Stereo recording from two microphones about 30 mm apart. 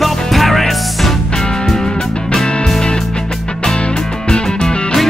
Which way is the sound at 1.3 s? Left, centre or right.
Centre.